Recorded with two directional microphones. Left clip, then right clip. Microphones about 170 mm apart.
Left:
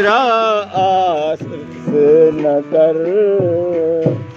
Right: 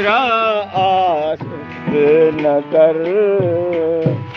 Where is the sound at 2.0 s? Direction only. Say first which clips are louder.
Left 2 dB; 25° left (ahead or behind).